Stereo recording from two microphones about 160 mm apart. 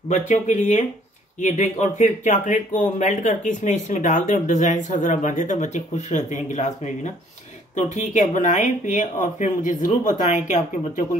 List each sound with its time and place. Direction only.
0.1 s speech: 50° left (ahead or behind)